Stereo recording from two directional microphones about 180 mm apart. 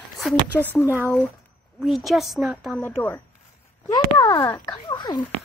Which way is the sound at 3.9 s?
20° left (ahead or behind).